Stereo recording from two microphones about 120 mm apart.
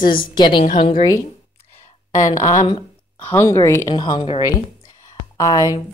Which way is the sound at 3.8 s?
40° left (ahead or behind).